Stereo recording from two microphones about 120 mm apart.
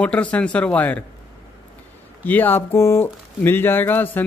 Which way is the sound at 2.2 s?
15° left (ahead or behind).